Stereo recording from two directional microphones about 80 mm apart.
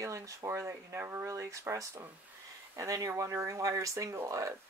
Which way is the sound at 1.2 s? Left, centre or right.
Right.